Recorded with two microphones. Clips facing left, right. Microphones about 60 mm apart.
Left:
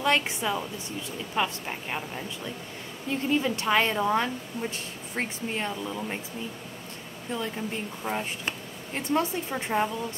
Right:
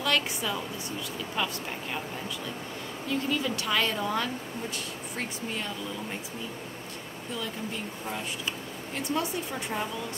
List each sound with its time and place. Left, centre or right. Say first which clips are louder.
0.0 s a woman's voice: left 3 dB; left
3.1 s speech: left 3 dB; left
8.9 s speech: left 4 dB; left